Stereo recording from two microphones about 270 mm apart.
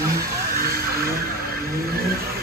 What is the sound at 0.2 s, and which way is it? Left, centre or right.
Vehicle, right.